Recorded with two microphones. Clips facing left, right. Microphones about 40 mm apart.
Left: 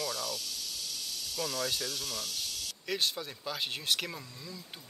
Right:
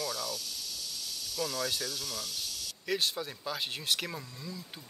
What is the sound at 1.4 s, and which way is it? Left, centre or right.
Speech, centre.